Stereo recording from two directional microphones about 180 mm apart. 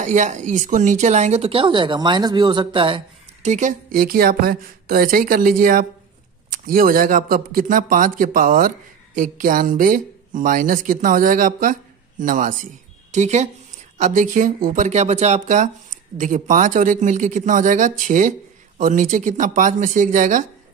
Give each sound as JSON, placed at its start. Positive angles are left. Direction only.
{"t": 0.0, "sound": "speech", "side_deg": -40}
{"t": 3.4, "sound": "a man's voice", "side_deg": -40}